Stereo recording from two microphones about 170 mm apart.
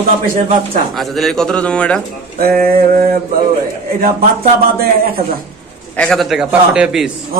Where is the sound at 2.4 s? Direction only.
60° right (ahead or behind).